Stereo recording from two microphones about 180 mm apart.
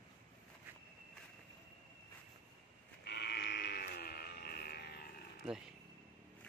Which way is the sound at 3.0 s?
70° left (ahead or behind).